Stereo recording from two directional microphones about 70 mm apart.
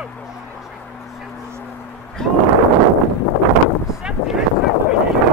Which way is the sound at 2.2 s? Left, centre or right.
Centre.